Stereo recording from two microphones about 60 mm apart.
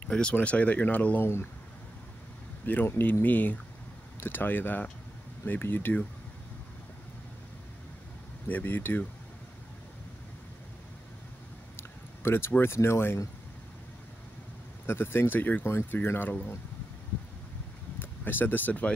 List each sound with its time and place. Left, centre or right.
0.1 s speech: centre
1.2 s speech: left
2.6 s speech: left
8.5 s speech: left
11.7 s speech: left
14.9 s speech: left
17.9 s speech: left